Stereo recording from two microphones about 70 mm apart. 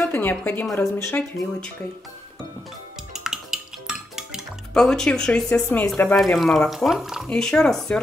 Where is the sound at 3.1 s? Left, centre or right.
Centre.